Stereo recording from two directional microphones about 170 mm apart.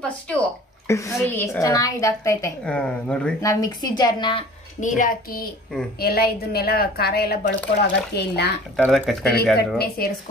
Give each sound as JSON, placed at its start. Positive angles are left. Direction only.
{"t": 0.8, "sound": "a woman's voice", "side_deg": 15}
{"t": 2.6, "sound": "a woman's voice", "side_deg": 5}
{"t": 3.3, "sound": "a woman's voice", "side_deg": 20}
{"t": 4.7, "sound": "speech", "side_deg": 50}
{"t": 5.9, "sound": "a woman's voice", "side_deg": 65}
{"t": 7.8, "sound": "speech", "side_deg": 80}
{"t": 8.7, "sound": "speech", "side_deg": -5}
{"t": 9.8, "sound": "a woman's voice", "side_deg": 60}